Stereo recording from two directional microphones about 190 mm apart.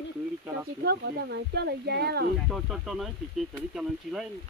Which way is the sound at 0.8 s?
55° right (ahead or behind).